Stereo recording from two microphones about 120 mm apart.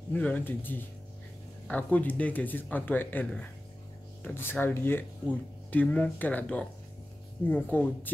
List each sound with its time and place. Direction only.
0.1 s speech: 15° left (ahead or behind)